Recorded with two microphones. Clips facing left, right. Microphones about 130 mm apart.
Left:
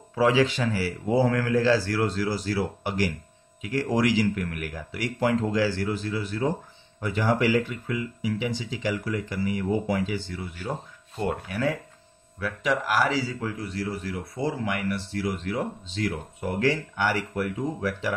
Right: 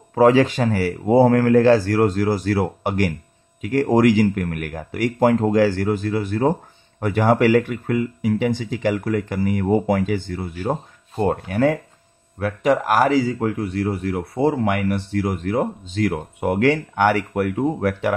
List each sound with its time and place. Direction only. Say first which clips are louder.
0.1 s speech: right 7 dB; 50° right (ahead or behind)